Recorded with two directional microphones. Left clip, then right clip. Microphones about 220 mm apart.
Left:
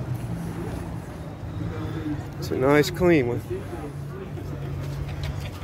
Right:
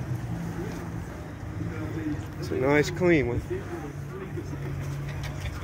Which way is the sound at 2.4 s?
10° left (ahead or behind).